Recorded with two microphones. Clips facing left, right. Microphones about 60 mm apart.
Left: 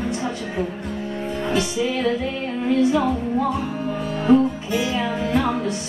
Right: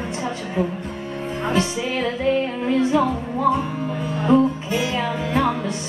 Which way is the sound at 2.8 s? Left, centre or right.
Right.